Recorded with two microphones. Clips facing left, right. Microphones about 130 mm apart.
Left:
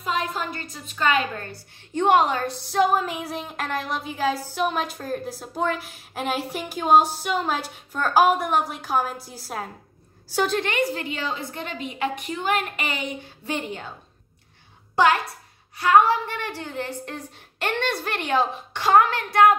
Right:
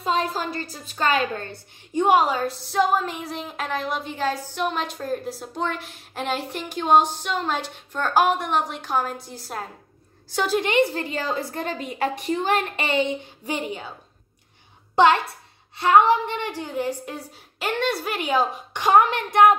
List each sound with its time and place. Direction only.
0.0 s a woman's voice: 35° right (ahead or behind)
1.5 s a woman's voice: 10° right (ahead or behind)
10.6 s a woman's voice: 20° right (ahead or behind)
10.9 s a woman's voice: 35° right (ahead or behind)
13.5 s a woman's voice: 10° right (ahead or behind)
15.0 s a woman's voice: 25° right (ahead or behind)